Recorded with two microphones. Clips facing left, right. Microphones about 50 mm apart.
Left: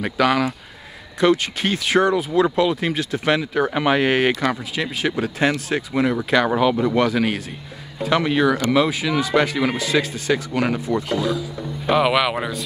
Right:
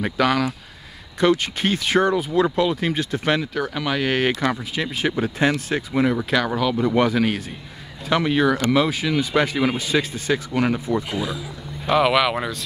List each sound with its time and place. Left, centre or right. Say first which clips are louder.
0.0 s speech: left 1 dB; centre
3.5 s speech: left 5 dB; left
4.4 s speech: left 1 dB; centre
6.4 s speech: left 3 dB; centre
7.0 s speech: even; centre
11.8 s speech: even; centre